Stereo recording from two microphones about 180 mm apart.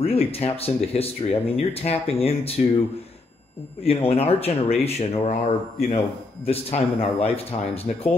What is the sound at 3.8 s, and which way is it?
Speech, 35° left (ahead or behind).